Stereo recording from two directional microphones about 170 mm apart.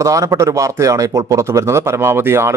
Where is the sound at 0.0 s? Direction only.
20° right (ahead or behind).